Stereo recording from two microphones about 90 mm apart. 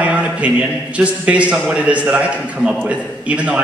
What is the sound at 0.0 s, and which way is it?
A man's voice, 15° right (ahead or behind).